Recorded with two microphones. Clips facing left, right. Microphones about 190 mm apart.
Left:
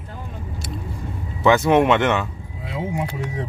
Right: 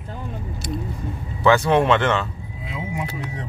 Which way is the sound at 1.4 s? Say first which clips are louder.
Left 1 dB; 20° left (ahead or behind).